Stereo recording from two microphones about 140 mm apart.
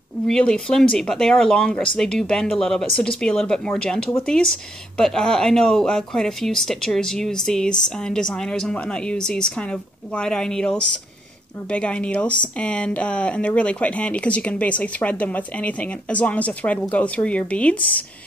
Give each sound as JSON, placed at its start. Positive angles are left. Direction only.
{"t": 0.3, "sound": "speech", "side_deg": 5}